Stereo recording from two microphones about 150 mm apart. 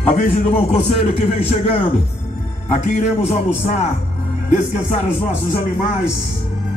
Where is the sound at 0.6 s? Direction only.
40° left (ahead or behind).